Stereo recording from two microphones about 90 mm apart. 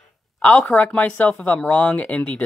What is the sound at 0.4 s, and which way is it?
Speech, 20° left (ahead or behind).